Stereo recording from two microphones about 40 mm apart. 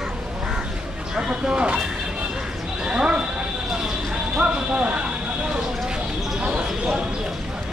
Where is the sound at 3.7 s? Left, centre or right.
Centre.